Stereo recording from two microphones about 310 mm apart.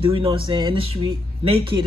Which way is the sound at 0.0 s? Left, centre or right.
Centre.